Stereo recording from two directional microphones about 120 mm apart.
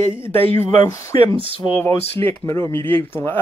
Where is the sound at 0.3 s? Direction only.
20° left (ahead or behind).